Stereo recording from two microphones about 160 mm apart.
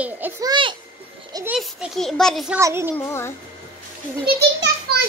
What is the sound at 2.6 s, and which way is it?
Speech, 15° right (ahead or behind).